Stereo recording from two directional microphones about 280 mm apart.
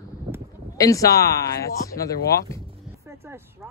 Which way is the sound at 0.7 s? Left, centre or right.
Centre.